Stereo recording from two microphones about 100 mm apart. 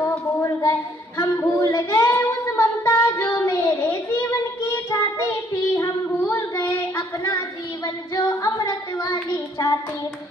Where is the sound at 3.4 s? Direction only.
30° left (ahead or behind).